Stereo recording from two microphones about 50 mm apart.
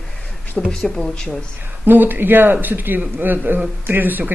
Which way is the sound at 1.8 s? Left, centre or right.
Right.